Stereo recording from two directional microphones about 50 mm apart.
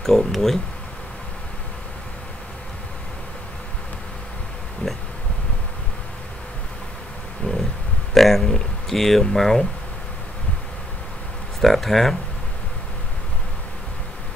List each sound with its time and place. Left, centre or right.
0.0 s speech: centre
4.8 s bee: left
7.4 s a sound: left
8.1 s speech: centre
11.6 s speech: centre